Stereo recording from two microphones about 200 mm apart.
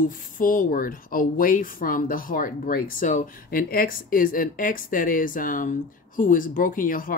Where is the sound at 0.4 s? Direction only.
45° left (ahead or behind).